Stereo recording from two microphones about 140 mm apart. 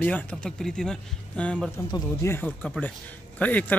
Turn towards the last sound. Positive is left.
turn(degrees=10)  # may be behind; listen again after turning